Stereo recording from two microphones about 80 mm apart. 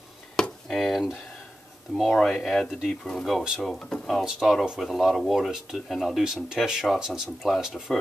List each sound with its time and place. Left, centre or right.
0.4 s a sound: centre
2.0 s speech: centre
3.8 s speech: centre
4.2 s speech: centre